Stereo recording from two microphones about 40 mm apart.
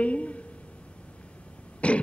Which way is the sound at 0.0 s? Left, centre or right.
Left.